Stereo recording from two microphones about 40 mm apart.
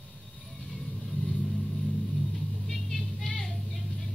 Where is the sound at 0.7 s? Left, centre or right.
Centre.